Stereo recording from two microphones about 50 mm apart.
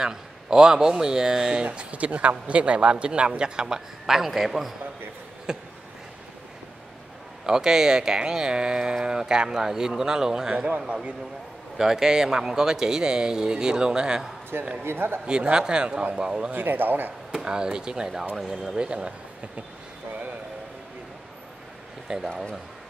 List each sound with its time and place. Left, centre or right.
0.0 s speech: centre
7.4 s a man's voice: centre
11.8 s speech: centre
14.8 s speech: right
15.2 s speech: centre
16.5 s a man's voice: right
17.3 s speech: centre
18.9 s speech: right
22.0 s speech: centre
22.3 s speech: centre